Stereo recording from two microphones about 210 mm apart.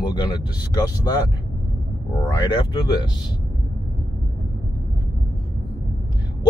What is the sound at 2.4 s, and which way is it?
Speech, 20° left (ahead or behind).